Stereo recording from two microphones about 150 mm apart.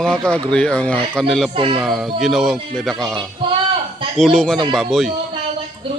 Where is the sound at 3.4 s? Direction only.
35° right (ahead or behind).